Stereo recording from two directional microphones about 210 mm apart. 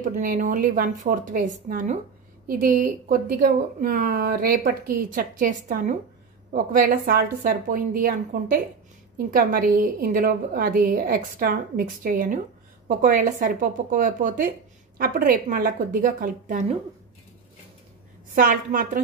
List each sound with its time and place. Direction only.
0.0 s a woman's voice: 40° right (ahead or behind)
18.3 s a woman's voice: 40° right (ahead or behind)